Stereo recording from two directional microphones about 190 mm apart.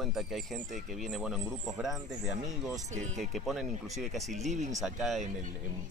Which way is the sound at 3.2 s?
Centre (ahead or behind).